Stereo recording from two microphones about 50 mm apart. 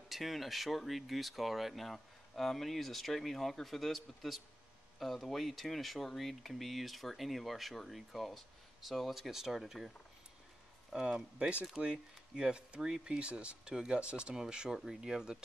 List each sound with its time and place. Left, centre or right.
0.1 s speech: centre
10.9 s speech: centre